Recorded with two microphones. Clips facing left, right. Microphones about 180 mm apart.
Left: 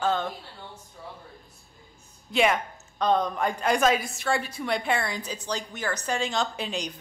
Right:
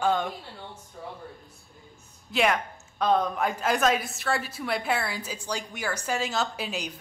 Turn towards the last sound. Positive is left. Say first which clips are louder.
# left 1 dB
turn(degrees=-5)  # may be behind; listen again after turning